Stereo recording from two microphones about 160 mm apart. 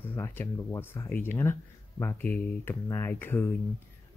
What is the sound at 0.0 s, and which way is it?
Speech, 15° left (ahead or behind).